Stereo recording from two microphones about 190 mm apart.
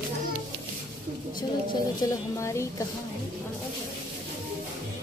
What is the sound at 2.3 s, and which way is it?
Speech, 15° left (ahead or behind).